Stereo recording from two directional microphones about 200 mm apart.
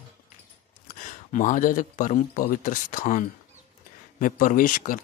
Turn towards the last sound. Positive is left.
turn(degrees=45)  # may be behind; listen again after turning